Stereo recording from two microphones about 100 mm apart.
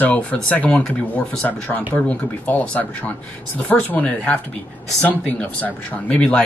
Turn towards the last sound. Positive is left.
turn(degrees=10)  # may be behind; listen again after turning